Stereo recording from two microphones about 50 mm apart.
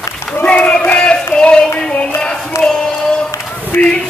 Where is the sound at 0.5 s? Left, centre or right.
Left.